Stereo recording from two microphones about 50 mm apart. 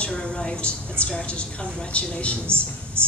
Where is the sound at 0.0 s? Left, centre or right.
Centre.